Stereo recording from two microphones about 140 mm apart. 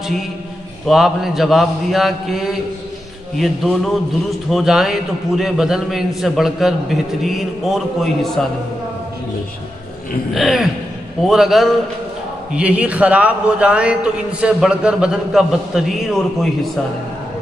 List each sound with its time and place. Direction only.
0.8 s a man's voice: centre (ahead or behind)
10.3 s a man's voice: centre (ahead or behind)